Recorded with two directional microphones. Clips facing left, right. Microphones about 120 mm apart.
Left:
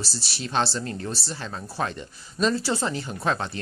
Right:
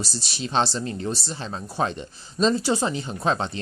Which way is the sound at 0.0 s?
20° right (ahead or behind).